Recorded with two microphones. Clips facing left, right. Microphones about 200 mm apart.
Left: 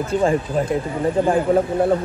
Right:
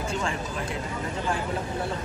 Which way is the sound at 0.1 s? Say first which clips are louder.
Left 14 dB; 50° left (ahead or behind).